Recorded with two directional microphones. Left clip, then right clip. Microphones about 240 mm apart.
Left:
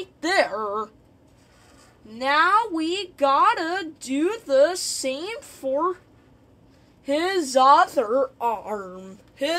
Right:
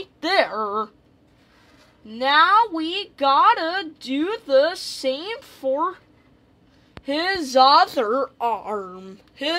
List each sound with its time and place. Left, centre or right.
0.2 s speech: right
2.0 s a woman's voice: right
7.1 s a woman's voice: right